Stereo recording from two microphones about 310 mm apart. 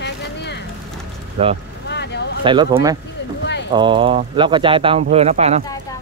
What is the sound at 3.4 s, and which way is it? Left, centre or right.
Clip-clop, left.